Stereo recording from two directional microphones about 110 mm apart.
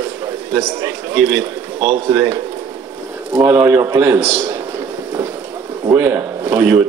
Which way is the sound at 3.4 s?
20° right (ahead or behind).